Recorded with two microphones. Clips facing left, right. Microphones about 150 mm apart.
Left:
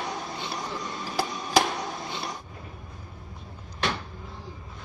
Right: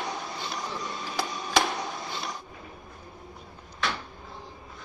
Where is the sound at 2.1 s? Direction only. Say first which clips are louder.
Left 1 dB; 20° left (ahead or behind).